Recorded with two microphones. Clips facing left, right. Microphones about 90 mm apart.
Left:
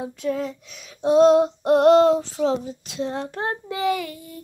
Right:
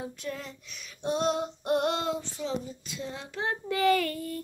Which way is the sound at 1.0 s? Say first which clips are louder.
Left 13 dB; 90° left.